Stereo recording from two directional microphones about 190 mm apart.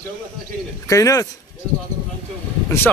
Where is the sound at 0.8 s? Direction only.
15° left (ahead or behind).